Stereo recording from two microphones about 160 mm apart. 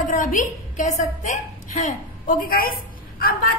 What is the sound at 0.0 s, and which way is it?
A woman's voice, 55° left (ahead or behind).